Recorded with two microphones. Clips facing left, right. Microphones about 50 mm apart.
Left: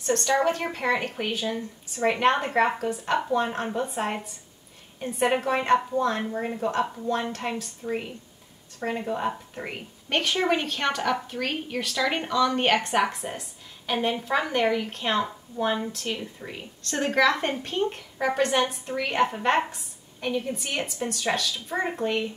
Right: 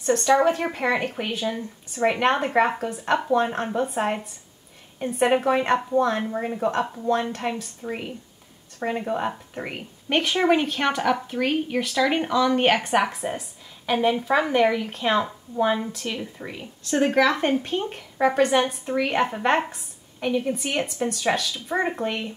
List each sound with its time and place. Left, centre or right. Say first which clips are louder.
0.0 s a woman's voice: right 4 dB; centre
7.8 s speech: left 2 dB; right
8.7 s a woman's voice: right 3 dB; centre